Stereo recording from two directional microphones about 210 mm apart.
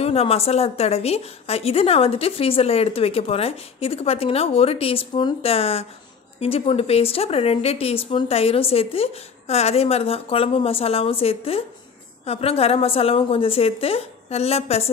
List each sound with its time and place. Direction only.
0.0 s a woman's voice: 30° left (ahead or behind)